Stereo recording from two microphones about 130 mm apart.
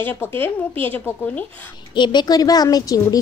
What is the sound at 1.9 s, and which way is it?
A child's voice, 35° left (ahead or behind).